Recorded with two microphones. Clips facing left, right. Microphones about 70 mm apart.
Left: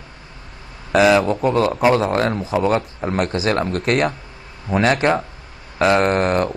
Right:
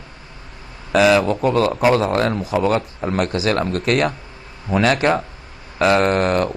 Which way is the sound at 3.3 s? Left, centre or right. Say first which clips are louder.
Even; left.